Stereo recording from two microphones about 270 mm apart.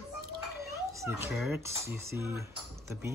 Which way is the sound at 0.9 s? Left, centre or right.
Centre.